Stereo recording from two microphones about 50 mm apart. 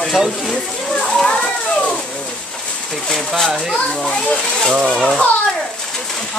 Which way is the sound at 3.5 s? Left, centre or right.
Centre.